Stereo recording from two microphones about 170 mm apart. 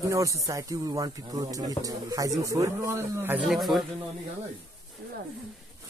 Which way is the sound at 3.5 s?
Centre (ahead or behind).